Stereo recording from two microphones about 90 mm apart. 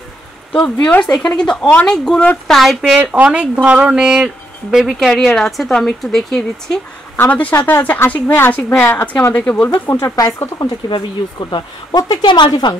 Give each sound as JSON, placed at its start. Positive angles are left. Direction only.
{"t": 0.5, "sound": "speech", "side_deg": 10}
{"t": 2.4, "sound": "speech", "side_deg": 0}
{"t": 3.0, "sound": "speech", "side_deg": -15}
{"t": 7.2, "sound": "speech", "side_deg": 15}
{"t": 9.7, "sound": "a woman's voice", "side_deg": 40}
{"t": 10.9, "sound": "a woman's voice", "side_deg": 60}